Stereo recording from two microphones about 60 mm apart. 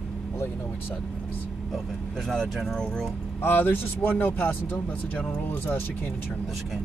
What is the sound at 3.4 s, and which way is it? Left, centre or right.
Speech, left.